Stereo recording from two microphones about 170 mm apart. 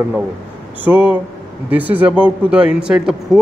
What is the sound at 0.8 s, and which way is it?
A man's voice, 10° right (ahead or behind).